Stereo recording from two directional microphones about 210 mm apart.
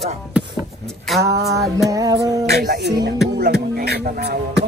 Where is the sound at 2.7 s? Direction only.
50° right (ahead or behind).